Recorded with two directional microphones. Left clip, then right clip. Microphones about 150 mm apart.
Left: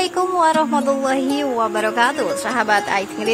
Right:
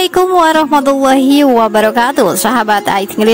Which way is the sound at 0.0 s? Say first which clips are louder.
Right 8 dB; 65° right (ahead or behind).